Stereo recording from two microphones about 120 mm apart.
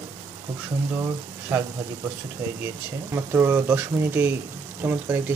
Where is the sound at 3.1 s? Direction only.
20° right (ahead or behind).